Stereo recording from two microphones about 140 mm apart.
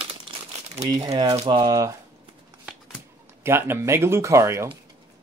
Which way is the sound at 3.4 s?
15° right (ahead or behind).